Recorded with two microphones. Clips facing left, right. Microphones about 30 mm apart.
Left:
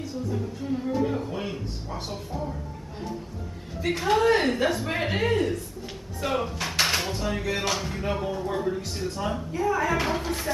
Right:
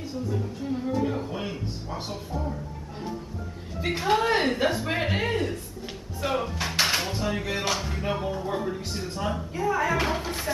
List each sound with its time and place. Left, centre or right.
0.3 s a woman's voice: centre